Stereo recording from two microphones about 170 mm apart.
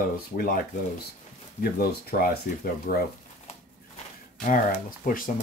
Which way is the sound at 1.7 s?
65° left (ahead or behind).